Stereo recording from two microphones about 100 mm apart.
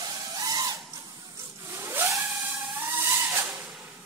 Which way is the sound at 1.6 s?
25° right (ahead or behind).